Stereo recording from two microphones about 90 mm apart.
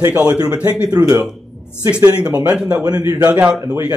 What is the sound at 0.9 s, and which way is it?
Speech, 40° right (ahead or behind).